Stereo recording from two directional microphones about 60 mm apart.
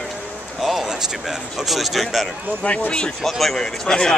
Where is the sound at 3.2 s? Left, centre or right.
Centre.